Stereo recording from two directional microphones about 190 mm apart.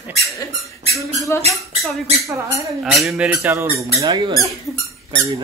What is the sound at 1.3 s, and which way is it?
Speech, 15° left (ahead or behind).